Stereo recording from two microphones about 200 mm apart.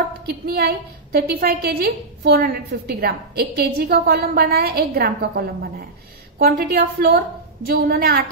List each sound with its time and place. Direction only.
0.3 s a woman's voice: 50° right (ahead or behind)